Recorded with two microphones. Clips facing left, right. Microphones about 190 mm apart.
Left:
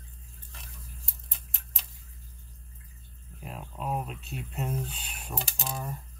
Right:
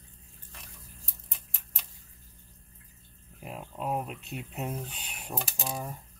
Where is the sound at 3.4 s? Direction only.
15° right (ahead or behind).